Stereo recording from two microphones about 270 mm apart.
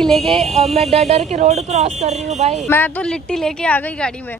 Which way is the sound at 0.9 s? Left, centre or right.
Right.